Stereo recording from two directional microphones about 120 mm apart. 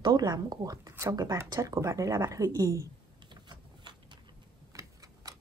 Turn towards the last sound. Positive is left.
turn(degrees=-30)  # may be behind; listen again after turning